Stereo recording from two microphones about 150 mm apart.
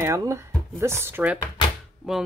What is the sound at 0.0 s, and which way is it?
A woman's voice, 20° right (ahead or behind).